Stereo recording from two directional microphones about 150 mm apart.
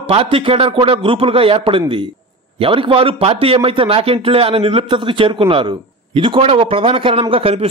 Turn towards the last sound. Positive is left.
turn(degrees=-40)  # may be behind; listen again after turning